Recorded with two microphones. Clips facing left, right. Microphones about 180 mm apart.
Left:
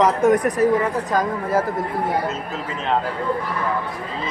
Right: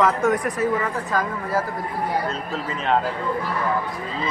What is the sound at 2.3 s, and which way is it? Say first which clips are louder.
Speech: even; centre (ahead or behind).